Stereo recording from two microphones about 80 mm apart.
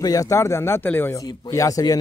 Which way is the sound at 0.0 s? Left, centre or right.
Left.